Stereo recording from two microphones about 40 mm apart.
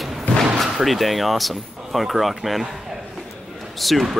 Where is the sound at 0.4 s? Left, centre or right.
Centre.